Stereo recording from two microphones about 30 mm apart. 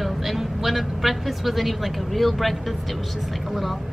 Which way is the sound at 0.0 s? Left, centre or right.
Centre.